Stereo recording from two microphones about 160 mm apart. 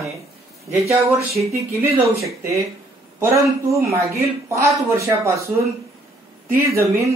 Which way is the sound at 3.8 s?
20° right (ahead or behind).